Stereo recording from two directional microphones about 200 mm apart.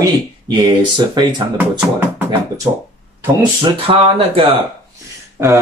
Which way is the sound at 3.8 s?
30° right (ahead or behind).